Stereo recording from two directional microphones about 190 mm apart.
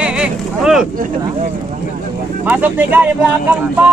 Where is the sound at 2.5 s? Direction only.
10° right (ahead or behind).